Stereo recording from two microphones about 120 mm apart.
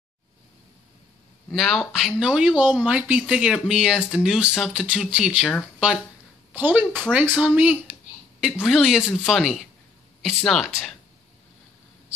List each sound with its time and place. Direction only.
1.5 s speech: centre (ahead or behind)
6.5 s speech: 15° right (ahead or behind)